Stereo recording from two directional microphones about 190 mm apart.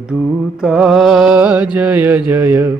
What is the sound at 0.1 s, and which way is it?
Mantra, 5° right (ahead or behind).